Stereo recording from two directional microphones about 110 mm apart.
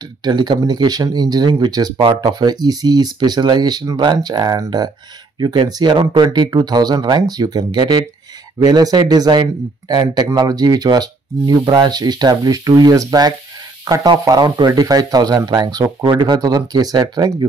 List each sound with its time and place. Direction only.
0.2 s speech: 40° right (ahead or behind)